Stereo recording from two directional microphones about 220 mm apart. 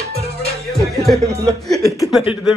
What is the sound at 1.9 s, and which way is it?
Speech, centre (ahead or behind).